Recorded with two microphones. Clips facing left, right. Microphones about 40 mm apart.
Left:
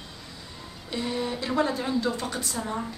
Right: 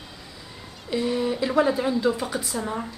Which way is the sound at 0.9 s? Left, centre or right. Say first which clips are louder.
Right 5 dB; centre.